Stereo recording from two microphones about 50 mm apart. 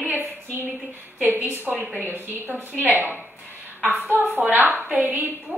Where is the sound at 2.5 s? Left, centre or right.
Right.